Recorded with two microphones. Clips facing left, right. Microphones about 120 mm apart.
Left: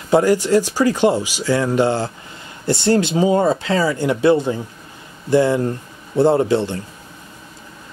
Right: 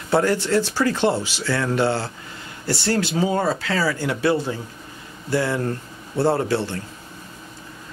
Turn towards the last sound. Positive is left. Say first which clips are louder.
# left 5 dB
turn(degrees=20)  # may be behind; listen again after turning